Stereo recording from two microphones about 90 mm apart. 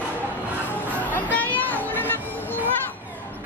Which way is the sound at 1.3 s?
20° left (ahead or behind).